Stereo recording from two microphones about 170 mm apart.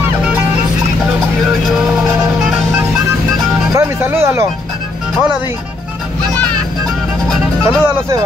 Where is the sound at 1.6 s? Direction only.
Centre (ahead or behind).